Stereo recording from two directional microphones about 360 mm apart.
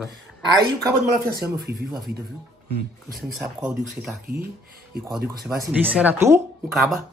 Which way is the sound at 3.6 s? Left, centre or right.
Centre.